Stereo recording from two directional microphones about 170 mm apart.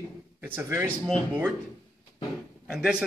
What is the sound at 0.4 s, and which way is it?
Speech, 15° right (ahead or behind).